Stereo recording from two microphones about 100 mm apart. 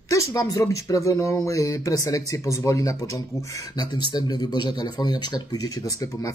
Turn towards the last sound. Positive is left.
turn(degrees=35)  # may be behind; listen again after turning